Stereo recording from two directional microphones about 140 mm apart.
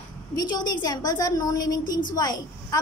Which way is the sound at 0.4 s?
30° left (ahead or behind).